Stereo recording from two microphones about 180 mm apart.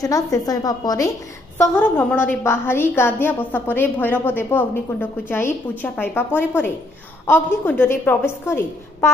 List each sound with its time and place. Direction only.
0.0 s a woman's voice: 20° left (ahead or behind)